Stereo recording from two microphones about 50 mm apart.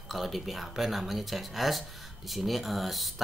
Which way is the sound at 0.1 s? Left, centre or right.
Centre.